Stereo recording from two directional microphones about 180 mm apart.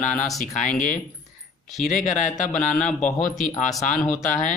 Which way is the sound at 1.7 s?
40° left (ahead or behind).